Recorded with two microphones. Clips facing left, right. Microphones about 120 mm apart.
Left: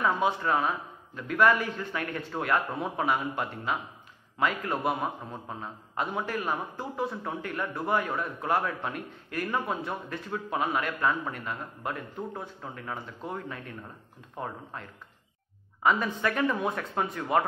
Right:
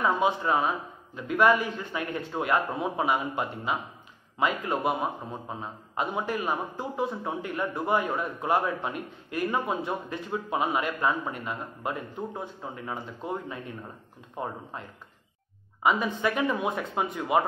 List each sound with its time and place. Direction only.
0.0 s a man's voice: 10° right (ahead or behind)